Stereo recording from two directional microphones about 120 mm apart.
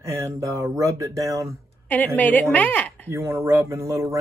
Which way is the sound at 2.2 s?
15° left (ahead or behind).